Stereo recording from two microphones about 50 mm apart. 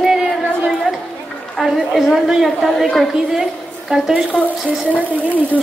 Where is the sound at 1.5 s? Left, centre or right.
Centre.